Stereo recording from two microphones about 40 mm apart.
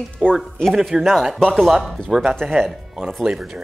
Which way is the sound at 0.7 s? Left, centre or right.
Centre.